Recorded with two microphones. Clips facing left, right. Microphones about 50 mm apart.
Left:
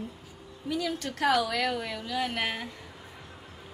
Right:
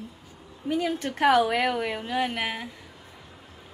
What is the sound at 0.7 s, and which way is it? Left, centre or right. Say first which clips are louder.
A woman's voice: right 4 dB; right.